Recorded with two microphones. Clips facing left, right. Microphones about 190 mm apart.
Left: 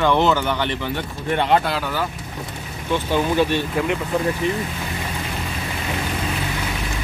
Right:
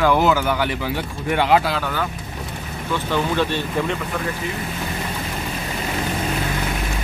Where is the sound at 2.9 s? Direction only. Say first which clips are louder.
Left 2 dB; 15° left (ahead or behind).